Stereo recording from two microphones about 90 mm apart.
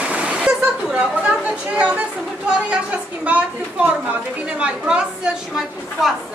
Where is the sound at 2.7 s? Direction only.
15° right (ahead or behind).